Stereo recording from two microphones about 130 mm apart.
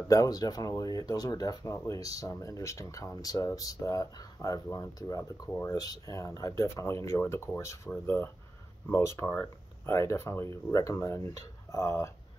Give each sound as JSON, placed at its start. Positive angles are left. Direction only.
{"t": 0.1, "sound": "speech", "side_deg": 30}
{"t": 5.5, "sound": "speech", "side_deg": 15}
{"t": 5.8, "sound": "speech", "side_deg": 30}